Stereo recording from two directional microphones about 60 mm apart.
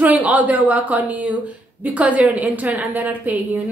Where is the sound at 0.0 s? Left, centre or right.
Right.